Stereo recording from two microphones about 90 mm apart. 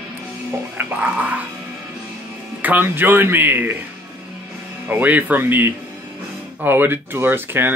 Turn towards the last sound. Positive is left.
turn(degrees=-25)  # may be behind; listen again after turning